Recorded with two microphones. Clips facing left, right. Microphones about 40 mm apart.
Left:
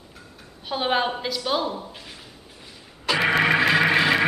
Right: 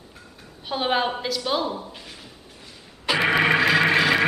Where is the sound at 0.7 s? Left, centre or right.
Centre.